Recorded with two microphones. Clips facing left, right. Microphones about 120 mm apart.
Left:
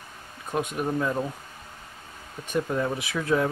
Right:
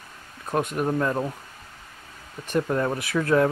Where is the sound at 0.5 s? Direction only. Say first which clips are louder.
Right 3 dB; 45° right (ahead or behind).